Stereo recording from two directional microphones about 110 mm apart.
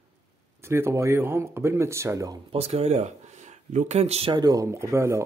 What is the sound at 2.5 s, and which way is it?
Speech, 70° right (ahead or behind).